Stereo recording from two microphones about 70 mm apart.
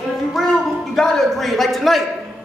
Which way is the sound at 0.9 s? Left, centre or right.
Centre.